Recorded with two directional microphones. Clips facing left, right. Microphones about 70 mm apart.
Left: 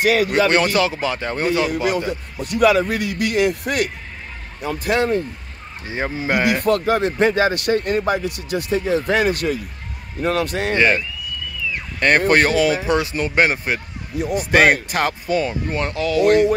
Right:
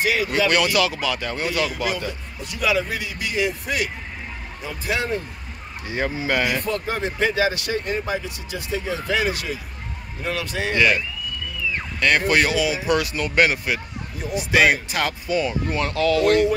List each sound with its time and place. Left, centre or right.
0.0 s a man's voice: left
0.5 s speech: left
2.4 s a man's voice: left
5.9 s speech: left
6.6 s a man's voice: left
7.2 s speech: left
10.7 s speech: left
12.0 s speech: left
12.8 s speech: left
14.3 s speech: left
15.7 s speech: left